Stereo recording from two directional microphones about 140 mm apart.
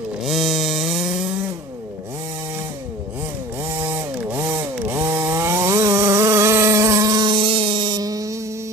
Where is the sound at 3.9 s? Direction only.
10° right (ahead or behind).